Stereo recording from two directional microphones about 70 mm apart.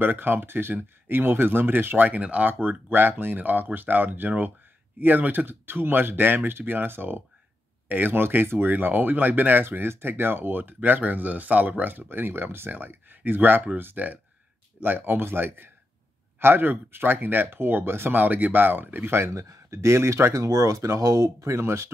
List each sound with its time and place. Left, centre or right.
0.0 s speech: right
20.4 s speech: right